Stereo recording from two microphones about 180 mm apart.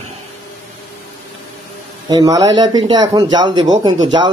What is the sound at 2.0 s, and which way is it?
Speech, 20° right (ahead or behind).